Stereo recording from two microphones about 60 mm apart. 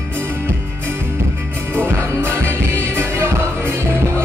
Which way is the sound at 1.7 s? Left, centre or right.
Right.